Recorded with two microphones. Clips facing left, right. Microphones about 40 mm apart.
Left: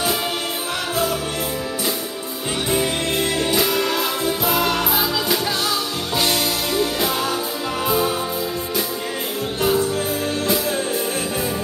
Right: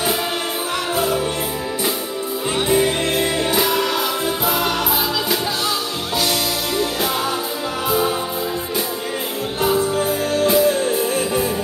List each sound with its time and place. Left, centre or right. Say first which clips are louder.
0.9 s music: right 2 dB; centre
2.7 s music: right 3 dB; centre
9.8 s music: right 2 dB; right